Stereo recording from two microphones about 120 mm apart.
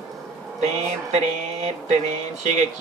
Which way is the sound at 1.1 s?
65° right (ahead or behind).